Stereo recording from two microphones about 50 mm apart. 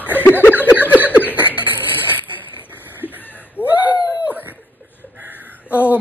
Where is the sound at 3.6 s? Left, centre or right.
Left.